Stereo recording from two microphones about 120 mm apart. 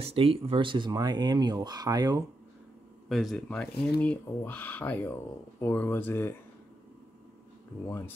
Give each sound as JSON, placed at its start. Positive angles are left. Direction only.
{"t": 0.0, "sound": "speech", "side_deg": -55}
{"t": 3.1, "sound": "speech", "side_deg": 0}
{"t": 3.4, "sound": "speech", "side_deg": 10}